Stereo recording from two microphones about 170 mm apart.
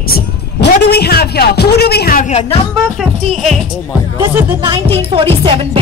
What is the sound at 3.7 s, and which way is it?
Speech, 10° right (ahead or behind).